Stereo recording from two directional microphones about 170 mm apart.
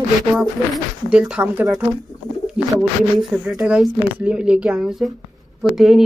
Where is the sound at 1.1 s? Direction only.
5° right (ahead or behind).